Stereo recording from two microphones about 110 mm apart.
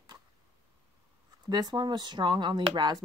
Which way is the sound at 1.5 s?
40° right (ahead or behind).